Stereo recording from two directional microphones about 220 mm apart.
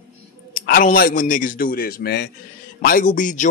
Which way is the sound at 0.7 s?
40° left (ahead or behind).